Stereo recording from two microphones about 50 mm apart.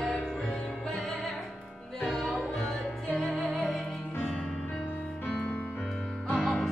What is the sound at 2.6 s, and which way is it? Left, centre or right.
Music, centre.